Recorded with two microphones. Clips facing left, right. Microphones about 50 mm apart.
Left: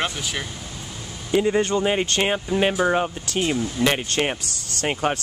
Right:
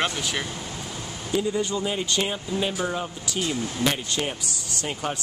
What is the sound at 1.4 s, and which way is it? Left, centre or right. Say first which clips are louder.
Speech: left 6 dB; left.